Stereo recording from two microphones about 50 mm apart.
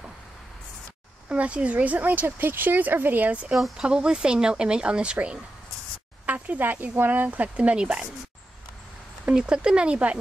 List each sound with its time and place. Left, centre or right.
1.3 s speech: right
2.2 s speech: right
3.7 s speech: centre
9.3 s speech: centre